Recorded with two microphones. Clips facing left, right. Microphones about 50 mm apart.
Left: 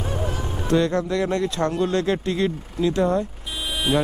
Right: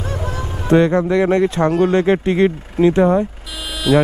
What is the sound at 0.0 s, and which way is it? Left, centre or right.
Honk, right.